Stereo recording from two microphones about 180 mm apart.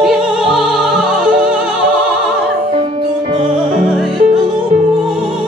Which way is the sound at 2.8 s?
30° right (ahead or behind).